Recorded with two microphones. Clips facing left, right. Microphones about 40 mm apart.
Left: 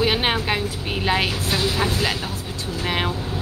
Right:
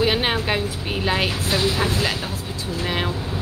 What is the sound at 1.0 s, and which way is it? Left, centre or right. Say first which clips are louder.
Vehicle: left 1 dB; centre.